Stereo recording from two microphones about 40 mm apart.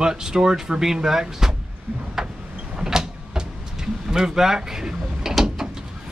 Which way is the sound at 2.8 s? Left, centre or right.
Centre.